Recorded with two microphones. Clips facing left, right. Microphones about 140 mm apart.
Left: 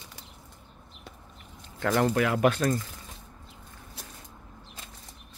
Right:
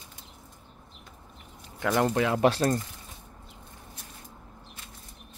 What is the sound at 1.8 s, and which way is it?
Speech, 20° right (ahead or behind).